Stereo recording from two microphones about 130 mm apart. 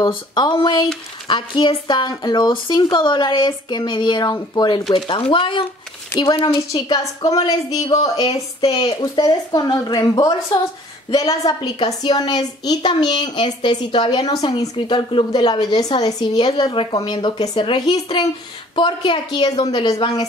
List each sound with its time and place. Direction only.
0.1 s speech: 35° left (ahead or behind)